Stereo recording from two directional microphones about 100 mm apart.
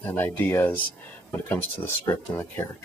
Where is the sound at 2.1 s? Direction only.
35° left (ahead or behind).